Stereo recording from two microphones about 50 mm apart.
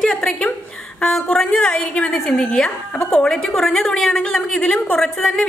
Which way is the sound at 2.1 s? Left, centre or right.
Centre.